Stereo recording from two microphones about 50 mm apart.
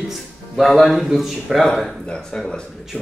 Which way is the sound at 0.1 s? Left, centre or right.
Centre.